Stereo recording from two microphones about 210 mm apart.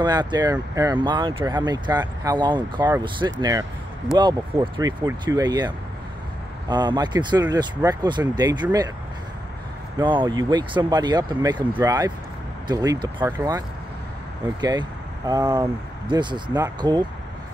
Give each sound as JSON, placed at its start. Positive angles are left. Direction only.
{"t": 0.0, "sound": "speech", "side_deg": -20}
{"t": 6.7, "sound": "speech", "side_deg": -20}
{"t": 9.9, "sound": "speech", "side_deg": -20}